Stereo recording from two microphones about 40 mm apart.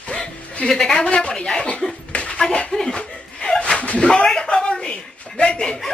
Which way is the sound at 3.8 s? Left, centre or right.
Left.